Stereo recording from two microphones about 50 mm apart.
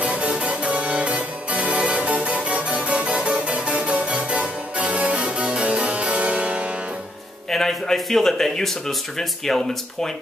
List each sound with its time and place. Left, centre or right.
0.0 s music: right
7.5 s speech: centre